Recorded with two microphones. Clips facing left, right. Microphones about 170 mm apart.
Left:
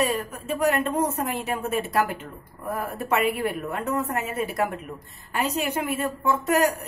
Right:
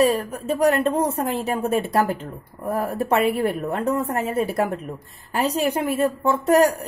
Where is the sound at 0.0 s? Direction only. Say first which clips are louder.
Right 6 dB; 35° right (ahead or behind).